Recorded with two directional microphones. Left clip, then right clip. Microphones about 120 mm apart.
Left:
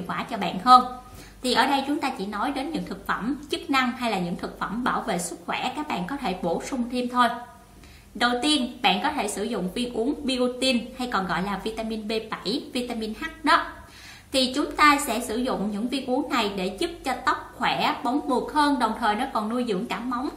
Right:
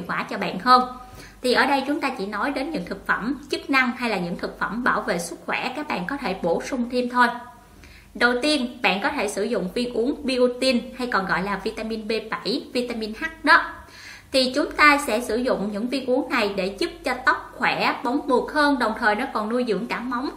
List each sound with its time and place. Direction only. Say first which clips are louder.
0.0 s a woman's voice: right 2 dB; 30° left (ahead or behind)